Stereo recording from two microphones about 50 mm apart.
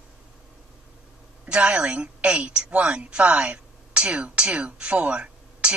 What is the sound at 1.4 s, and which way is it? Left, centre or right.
A woman's voice, right.